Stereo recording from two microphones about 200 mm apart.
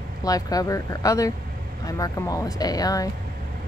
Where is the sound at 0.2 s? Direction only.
20° left (ahead or behind).